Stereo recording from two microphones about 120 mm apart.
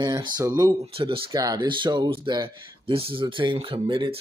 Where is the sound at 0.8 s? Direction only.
50° right (ahead or behind).